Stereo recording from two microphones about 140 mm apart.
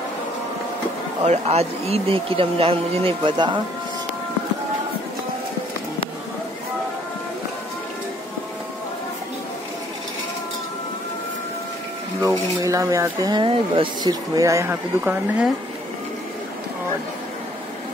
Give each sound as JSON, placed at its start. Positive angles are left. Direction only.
{"t": 1.2, "sound": "speech", "side_deg": -50}
{"t": 12.6, "sound": "speech", "side_deg": -25}